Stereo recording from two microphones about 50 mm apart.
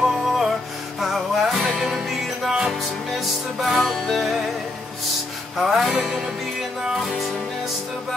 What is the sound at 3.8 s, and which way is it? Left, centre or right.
Music, centre.